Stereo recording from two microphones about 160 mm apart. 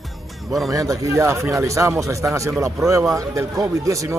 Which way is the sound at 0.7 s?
20° right (ahead or behind).